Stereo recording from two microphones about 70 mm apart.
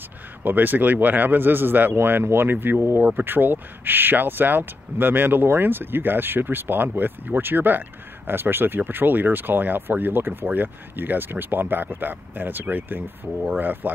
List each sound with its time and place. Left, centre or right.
0.4 s speech: right